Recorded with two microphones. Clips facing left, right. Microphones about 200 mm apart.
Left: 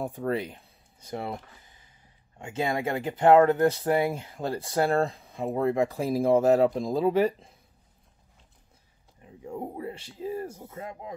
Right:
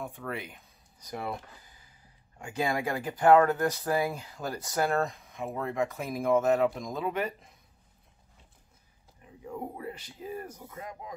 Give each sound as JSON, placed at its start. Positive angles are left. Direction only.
{"t": 0.2, "sound": "speech", "side_deg": 35}
{"t": 2.3, "sound": "speech", "side_deg": 25}
{"t": 9.2, "sound": "speech", "side_deg": 30}